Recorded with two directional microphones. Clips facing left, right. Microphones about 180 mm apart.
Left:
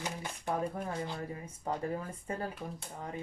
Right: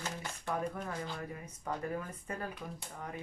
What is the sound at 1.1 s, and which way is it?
Speech, 30° left (ahead or behind).